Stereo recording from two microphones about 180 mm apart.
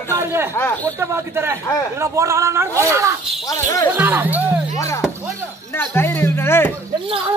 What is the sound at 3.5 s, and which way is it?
Speech, 20° left (ahead or behind).